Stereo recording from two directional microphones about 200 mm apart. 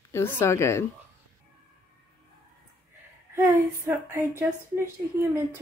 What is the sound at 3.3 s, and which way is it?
Speech, 10° right (ahead or behind).